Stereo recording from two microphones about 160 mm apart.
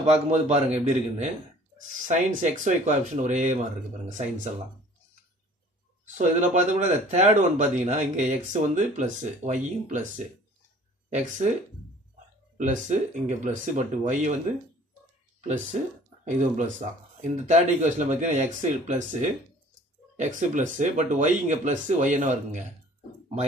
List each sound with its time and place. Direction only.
0.0 s speech: 40° right (ahead or behind)
6.1 s speech: 50° right (ahead or behind)
11.1 s speech: 50° right (ahead or behind)
12.5 s speech: 50° right (ahead or behind)
15.4 s speech: 50° right (ahead or behind)